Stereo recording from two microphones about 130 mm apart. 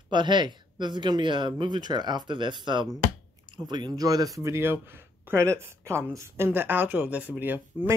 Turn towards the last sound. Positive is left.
turn(degrees=-15)  # may be behind; listen again after turning